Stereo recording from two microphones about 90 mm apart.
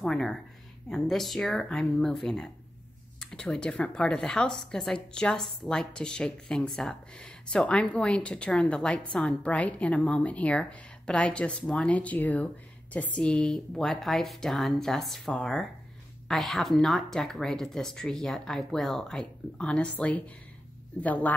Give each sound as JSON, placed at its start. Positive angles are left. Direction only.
{"t": 0.0, "sound": "speech", "side_deg": 5}